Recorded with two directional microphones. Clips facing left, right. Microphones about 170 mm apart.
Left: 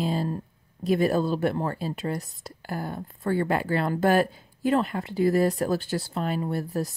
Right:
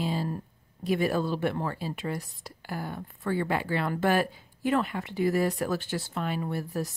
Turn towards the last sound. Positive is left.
turn(degrees=40)  # may be behind; listen again after turning